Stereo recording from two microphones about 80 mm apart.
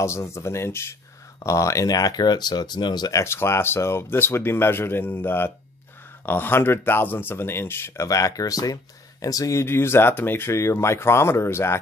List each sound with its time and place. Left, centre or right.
0.0 s speech: left
3.2 s speech: left
8.1 s speech: left